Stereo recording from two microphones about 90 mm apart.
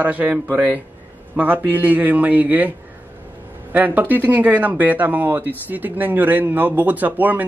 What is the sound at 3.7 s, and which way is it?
A man's voice, 20° right (ahead or behind).